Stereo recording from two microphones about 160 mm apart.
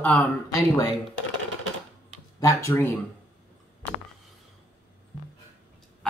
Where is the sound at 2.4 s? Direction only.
20° left (ahead or behind).